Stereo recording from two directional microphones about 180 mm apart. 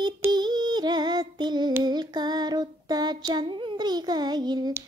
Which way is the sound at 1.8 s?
25° right (ahead or behind).